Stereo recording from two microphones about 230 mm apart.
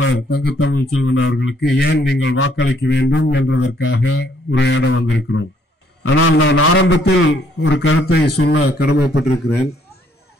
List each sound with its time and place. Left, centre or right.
0.0 s a man's voice: left